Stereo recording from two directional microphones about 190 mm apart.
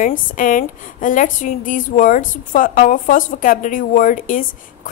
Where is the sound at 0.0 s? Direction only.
45° left (ahead or behind).